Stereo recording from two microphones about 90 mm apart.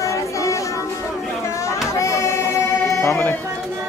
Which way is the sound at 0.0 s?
35° left (ahead or behind).